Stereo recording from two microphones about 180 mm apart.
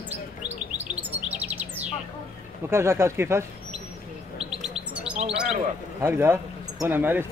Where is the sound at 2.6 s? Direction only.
15° right (ahead or behind).